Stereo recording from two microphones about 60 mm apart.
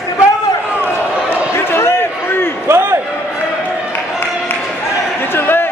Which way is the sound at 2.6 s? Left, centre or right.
Right.